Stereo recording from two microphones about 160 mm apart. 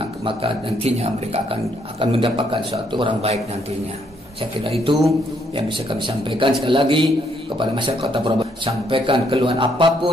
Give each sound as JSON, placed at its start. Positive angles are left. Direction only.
{"t": 0.0, "sound": "speech", "side_deg": -35}
{"t": 4.6, "sound": "speech", "side_deg": -35}